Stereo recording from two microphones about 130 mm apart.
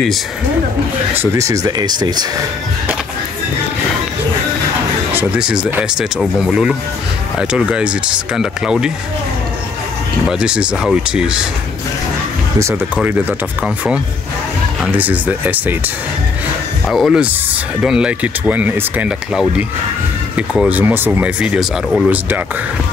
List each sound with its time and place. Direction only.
1.1 s speech: 20° right (ahead or behind)
5.1 s speech: 15° right (ahead or behind)
10.2 s speech: 5° right (ahead or behind)
12.9 s speech: 10° right (ahead or behind)
14.9 s speech: 15° right (ahead or behind)
16.8 s speech: centre (ahead or behind)
20.3 s speech: 10° right (ahead or behind)